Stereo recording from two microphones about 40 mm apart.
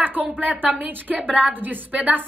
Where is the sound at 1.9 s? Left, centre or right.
Right.